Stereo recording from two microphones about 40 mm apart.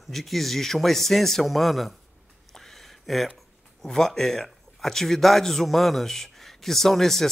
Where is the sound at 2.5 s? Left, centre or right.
Centre.